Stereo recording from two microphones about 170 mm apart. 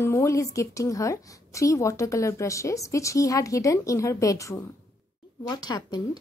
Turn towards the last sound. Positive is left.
turn(degrees=25)  # may be behind; listen again after turning